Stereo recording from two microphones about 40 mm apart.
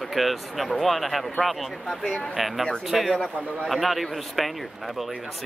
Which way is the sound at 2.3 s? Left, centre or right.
Centre.